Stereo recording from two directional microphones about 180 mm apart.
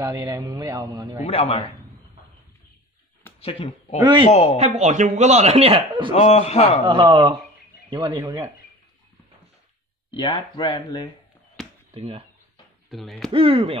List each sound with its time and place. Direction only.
0.0 s a man's voice: 20° right (ahead or behind)
1.2 s a man's voice: 35° left (ahead or behind)
3.3 s speech: 30° left (ahead or behind)
4.0 s a man's voice: 25° right (ahead or behind)
4.3 s a man's voice: 35° left (ahead or behind)
4.6 s a man's voice: 40° right (ahead or behind)
6.1 s a man's voice: 35° left (ahead or behind)
6.9 s a man's voice: 30° right (ahead or behind)
10.1 s speech: 25° left (ahead or behind)
11.6 s chop: 5° left (ahead or behind)
11.9 s a man's voice: 30° right (ahead or behind)
12.9 s speech: centre (ahead or behind)
13.3 s a man's voice: 30° right (ahead or behind)